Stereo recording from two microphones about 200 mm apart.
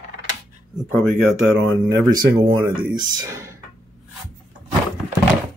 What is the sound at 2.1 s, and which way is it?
Speech, 25° right (ahead or behind).